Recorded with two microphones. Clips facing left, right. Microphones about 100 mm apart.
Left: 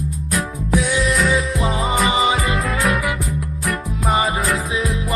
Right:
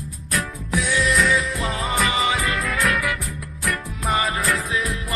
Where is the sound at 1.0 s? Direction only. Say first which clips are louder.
Left 2 dB; centre (ahead or behind).